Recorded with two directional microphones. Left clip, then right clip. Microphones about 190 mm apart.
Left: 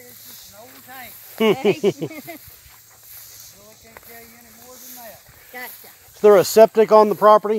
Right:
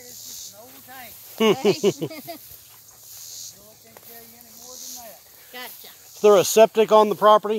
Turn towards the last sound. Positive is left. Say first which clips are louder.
# left 3 dB
turn(degrees=10)  # may be behind; listen again after turning